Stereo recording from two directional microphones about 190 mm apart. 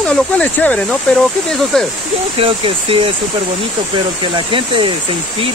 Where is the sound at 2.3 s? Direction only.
30° right (ahead or behind).